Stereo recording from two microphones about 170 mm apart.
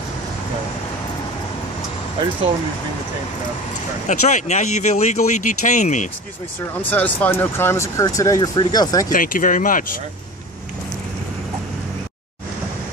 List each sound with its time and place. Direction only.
4.1 s speech: 45° left (ahead or behind)
6.8 s speech: 10° left (ahead or behind)
9.1 s speech: 55° left (ahead or behind)